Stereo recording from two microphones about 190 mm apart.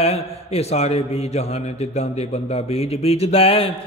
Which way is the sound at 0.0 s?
30° left (ahead or behind).